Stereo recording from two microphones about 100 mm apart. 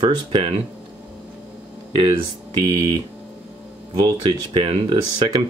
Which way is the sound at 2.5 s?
45° right (ahead or behind).